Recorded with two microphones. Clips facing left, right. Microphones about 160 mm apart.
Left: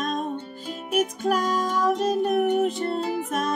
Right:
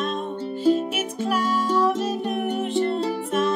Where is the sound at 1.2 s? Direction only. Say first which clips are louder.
Even; 40° left (ahead or behind).